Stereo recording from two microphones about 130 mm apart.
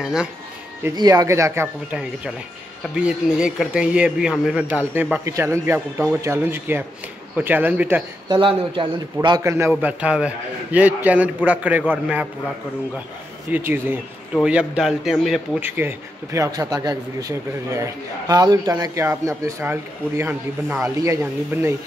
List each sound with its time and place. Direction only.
0.0 s a man's voice: 5° right (ahead or behind)
0.9 s speech: 25° right (ahead or behind)
2.9 s speech: 5° right (ahead or behind)
8.3 s speech: 40° right (ahead or behind)
9.4 s speech: 20° right (ahead or behind)
9.8 s speech: 10° right (ahead or behind)
13.5 s a man's voice: 15° right (ahead or behind)
15.6 s speech: 15° right (ahead or behind)